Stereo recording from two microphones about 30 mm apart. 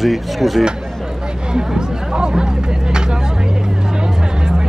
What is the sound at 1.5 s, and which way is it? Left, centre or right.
Music, right.